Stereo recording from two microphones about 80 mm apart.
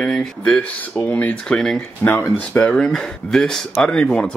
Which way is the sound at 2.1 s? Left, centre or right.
Left.